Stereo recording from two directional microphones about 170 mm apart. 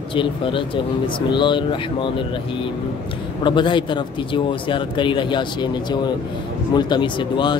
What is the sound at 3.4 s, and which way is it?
Speech, 30° left (ahead or behind).